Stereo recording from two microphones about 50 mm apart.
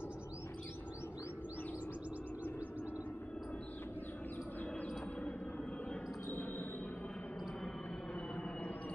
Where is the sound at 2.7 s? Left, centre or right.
Right.